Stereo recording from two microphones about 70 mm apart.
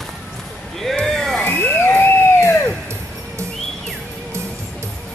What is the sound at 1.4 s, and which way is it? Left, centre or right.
Crowd, left.